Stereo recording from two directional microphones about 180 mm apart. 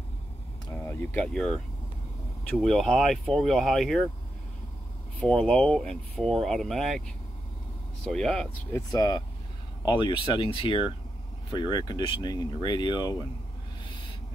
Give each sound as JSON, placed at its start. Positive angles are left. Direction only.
{"t": 0.7, "sound": "speech", "side_deg": 10}
{"t": 5.2, "sound": "speech", "side_deg": 5}
{"t": 8.9, "sound": "speech", "side_deg": 20}